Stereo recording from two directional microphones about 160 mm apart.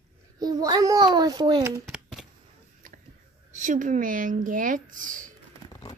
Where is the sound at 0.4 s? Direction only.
25° right (ahead or behind).